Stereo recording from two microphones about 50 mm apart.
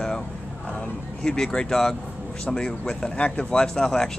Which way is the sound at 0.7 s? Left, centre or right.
Centre.